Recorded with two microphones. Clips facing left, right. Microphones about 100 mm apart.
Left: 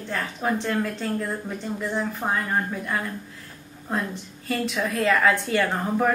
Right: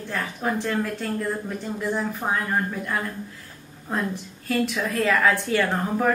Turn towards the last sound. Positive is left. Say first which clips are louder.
# even
turn(degrees=0)  # may be behind; listen again after turning